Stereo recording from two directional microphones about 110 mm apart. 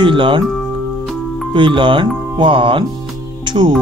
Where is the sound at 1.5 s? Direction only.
50° right (ahead or behind).